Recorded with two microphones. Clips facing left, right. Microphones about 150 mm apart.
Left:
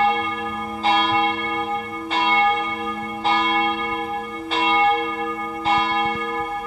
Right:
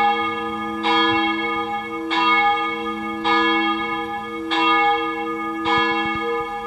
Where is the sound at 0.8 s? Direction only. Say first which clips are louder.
Even; 35° left (ahead or behind).